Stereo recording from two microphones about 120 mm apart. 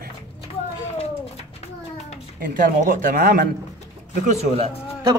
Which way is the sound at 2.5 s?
90° right.